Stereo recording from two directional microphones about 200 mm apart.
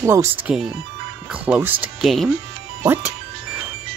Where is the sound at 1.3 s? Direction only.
5° right (ahead or behind).